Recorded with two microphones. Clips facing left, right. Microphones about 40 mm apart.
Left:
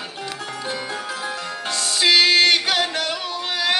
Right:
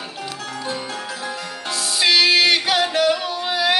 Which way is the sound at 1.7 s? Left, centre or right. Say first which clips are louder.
Even; centre.